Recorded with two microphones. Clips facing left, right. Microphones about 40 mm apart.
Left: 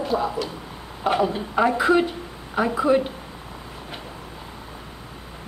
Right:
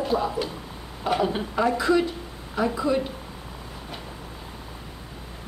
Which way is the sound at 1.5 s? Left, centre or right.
Left.